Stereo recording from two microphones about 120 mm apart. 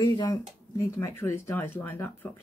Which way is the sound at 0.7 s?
20° left (ahead or behind).